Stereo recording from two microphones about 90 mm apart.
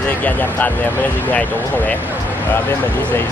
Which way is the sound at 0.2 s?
20° left (ahead or behind).